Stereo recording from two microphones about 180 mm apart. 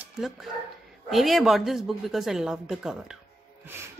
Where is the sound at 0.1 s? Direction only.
Centre (ahead or behind).